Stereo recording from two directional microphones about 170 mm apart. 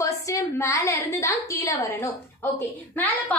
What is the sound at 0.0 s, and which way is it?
A woman's voice, 20° left (ahead or behind).